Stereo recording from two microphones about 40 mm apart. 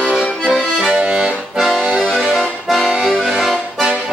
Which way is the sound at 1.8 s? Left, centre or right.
Right.